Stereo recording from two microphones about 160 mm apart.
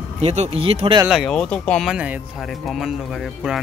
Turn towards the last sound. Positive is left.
turn(degrees=0)  # may be behind; listen again after turning